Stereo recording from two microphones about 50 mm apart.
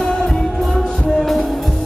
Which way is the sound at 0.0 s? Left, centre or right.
Centre.